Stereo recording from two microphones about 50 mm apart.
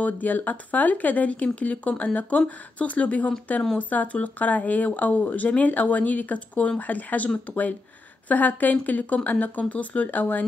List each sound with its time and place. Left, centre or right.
0.0 s speech: left